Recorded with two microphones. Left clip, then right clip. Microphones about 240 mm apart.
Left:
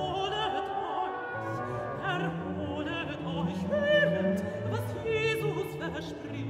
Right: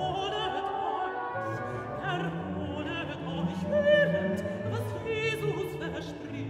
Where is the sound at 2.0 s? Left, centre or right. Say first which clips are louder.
Even; centre.